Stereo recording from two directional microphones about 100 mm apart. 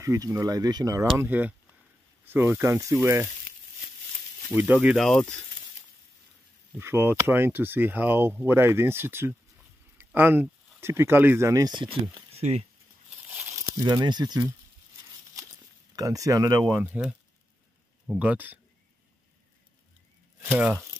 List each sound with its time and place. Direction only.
0.0 s speech: 30° right (ahead or behind)
1.1 s speech: 20° right (ahead or behind)
4.5 s speech: 15° right (ahead or behind)
4.7 s speech: centre (ahead or behind)
6.8 s speech: 25° right (ahead or behind)
12.3 s a sound: 90° right
13.3 s crumpling: 15° right (ahead or behind)
13.7 s speech: 40° right (ahead or behind)
16.0 s speech: 35° right (ahead or behind)
16.8 s speech: 15° right (ahead or behind)
18.2 s speech: 15° right (ahead or behind)
20.4 s speech: 15° right (ahead or behind)